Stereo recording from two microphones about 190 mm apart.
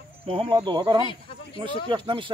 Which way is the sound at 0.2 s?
30° right (ahead or behind).